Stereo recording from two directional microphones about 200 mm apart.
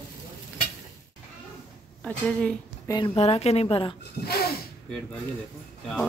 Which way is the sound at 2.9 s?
25° left (ahead or behind).